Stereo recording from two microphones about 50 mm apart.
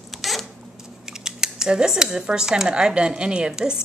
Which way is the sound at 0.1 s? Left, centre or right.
Centre.